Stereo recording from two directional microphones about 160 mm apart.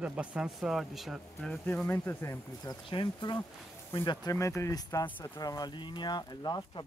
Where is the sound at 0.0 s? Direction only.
10° right (ahead or behind).